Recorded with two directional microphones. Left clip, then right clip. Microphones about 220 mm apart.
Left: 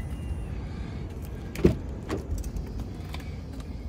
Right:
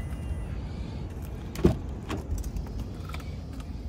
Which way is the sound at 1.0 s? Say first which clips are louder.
Left 1 dB; 5° right (ahead or behind).